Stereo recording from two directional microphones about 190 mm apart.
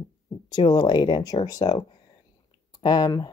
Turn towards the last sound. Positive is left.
turn(degrees=20)  # may be behind; listen again after turning